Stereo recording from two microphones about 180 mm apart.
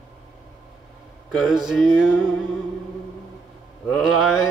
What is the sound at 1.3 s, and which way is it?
Music, centre (ahead or behind).